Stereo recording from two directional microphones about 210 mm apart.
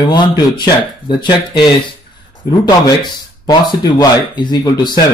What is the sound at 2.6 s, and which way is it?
A man's voice, 20° left (ahead or behind).